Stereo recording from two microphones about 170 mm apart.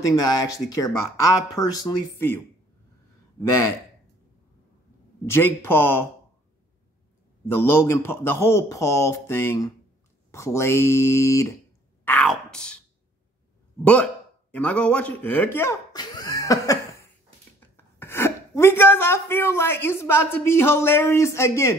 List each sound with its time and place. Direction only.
0.0 s speech: 20° left (ahead or behind)
5.2 s a man's voice: 15° left (ahead or behind)
7.5 s a man's voice: 15° left (ahead or behind)
12.0 s a sound: 10° left (ahead or behind)
14.5 s speech: 10° left (ahead or behind)